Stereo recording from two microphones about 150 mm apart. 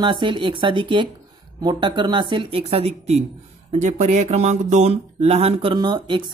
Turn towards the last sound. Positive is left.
turn(degrees=-30)  # may be behind; listen again after turning